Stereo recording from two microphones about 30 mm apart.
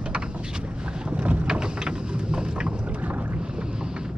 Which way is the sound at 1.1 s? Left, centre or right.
Right.